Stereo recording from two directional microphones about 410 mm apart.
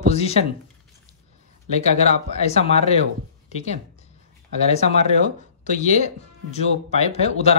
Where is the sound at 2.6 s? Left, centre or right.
Centre.